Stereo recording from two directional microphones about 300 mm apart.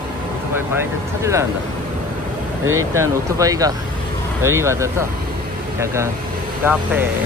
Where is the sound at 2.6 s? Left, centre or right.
Right.